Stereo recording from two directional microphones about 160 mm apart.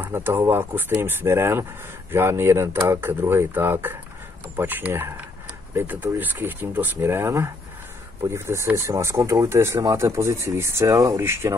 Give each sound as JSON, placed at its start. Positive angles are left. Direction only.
{"t": 0.0, "sound": "speech", "side_deg": -15}